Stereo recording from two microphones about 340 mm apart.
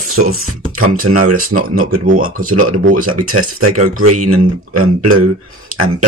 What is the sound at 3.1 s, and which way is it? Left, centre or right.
Speech, right.